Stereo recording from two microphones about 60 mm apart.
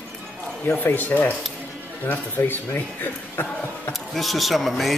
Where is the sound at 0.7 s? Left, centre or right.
Left.